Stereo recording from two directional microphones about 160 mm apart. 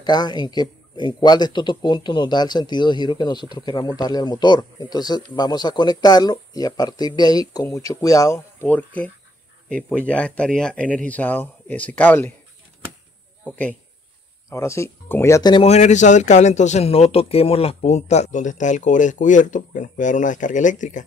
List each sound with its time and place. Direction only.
0.0 s a man's voice: 25° left (ahead or behind)
8.6 s speech: 10° left (ahead or behind)
14.5 s speech: 15° left (ahead or behind)
15.5 s a man's voice: 40° left (ahead or behind)